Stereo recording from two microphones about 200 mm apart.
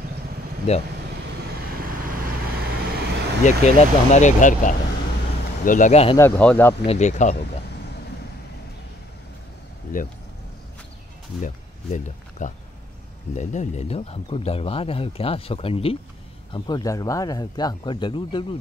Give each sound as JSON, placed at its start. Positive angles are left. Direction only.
{"t": 0.7, "sound": "speech", "side_deg": 35}
{"t": 1.4, "sound": "vehicle", "side_deg": -50}
{"t": 3.4, "sound": "speech", "side_deg": 35}
{"t": 6.1, "sound": "speech", "side_deg": 10}
{"t": 6.9, "sound": "speech", "side_deg": 35}
{"t": 11.4, "sound": "speech", "side_deg": 40}